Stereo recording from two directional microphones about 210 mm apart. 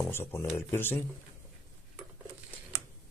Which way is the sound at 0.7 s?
10° left (ahead or behind).